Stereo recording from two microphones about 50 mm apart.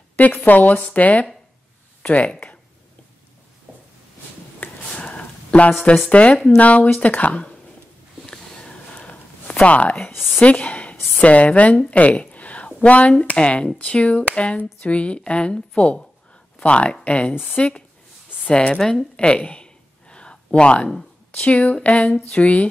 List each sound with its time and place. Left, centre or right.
0.2 s a woman's voice: left
4.8 s a sound: left
6.0 s speech: left
8.3 s a sound: centre
9.7 s speech: left
10.1 s speech: centre
10.4 s speech: left
11.9 s a sound: left
12.8 s speech: left
18.8 s a woman's voice: centre
19.1 s a sound: left
21.3 s speech: left